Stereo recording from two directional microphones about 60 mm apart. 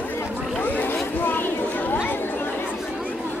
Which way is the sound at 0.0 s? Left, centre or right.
Left.